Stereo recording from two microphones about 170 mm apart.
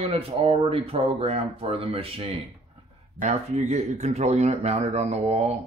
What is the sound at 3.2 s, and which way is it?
Speech, 45° right (ahead or behind).